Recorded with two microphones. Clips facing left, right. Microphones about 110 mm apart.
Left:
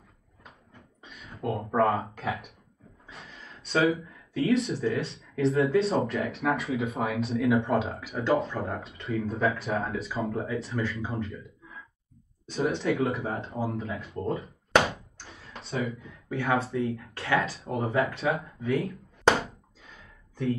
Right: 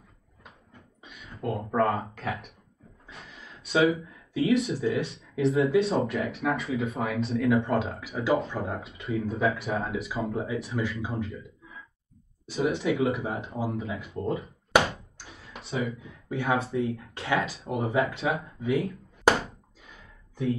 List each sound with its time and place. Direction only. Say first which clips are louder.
1.0 s a sound: left 1 dB; centre (ahead or behind)
1.8 s speech: left 1 dB; centre (ahead or behind)
3.1 s a sound: even; centre (ahead or behind)
5.2 s speech: even; centre (ahead or behind)
12.4 s speech: right 1 dB; 5° right (ahead or behind)
16.3 s speech: right 1 dB; 25° right (ahead or behind)
16.5 s speech: left 2 dB; centre (ahead or behind)
17.1 s speech: left 1 dB; 20° right (ahead or behind)
18.6 s a sound: right 1 dB; centre (ahead or behind)